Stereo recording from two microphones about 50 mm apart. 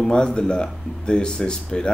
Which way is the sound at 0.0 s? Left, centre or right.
Centre.